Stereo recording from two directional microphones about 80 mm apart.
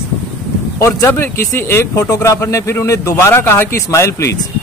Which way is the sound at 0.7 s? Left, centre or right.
Left.